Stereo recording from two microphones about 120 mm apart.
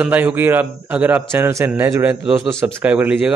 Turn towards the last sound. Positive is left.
turn(degrees=-15)  # may be behind; listen again after turning